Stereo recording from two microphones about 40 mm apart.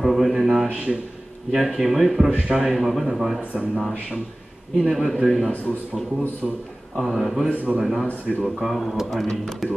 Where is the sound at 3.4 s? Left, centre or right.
Right.